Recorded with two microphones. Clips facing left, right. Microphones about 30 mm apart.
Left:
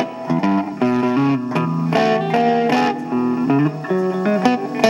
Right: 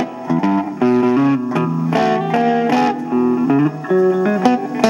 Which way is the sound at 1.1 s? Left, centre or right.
Centre.